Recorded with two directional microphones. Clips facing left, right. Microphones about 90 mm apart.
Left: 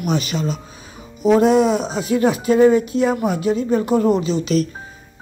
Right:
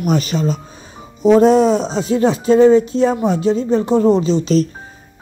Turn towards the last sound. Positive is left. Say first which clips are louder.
# right 4 dB
turn(degrees=-35)  # may be behind; listen again after turning